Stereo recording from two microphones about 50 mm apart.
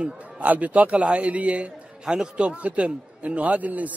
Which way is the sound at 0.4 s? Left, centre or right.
Right.